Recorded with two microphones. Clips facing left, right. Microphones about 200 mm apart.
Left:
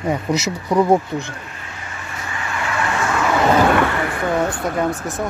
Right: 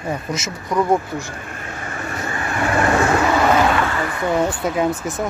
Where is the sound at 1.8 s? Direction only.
50° right (ahead or behind).